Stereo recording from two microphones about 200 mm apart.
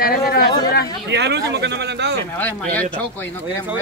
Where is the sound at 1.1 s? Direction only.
60° right (ahead or behind).